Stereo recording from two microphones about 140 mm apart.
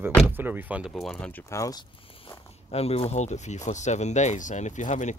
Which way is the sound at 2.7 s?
45° left (ahead or behind).